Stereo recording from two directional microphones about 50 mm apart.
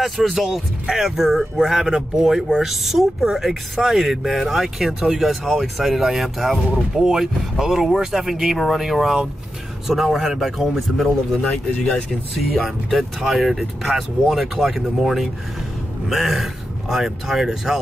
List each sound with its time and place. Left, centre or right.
0.0 s a man's voice: centre
11.4 s speech: centre
12.4 s a man's voice: centre